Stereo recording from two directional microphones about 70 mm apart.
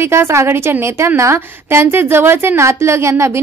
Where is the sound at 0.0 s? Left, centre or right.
Right.